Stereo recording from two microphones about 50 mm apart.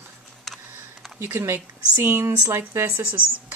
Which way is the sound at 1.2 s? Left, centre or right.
Right.